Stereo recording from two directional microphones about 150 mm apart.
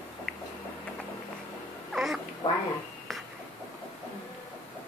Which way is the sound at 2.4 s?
25° left (ahead or behind).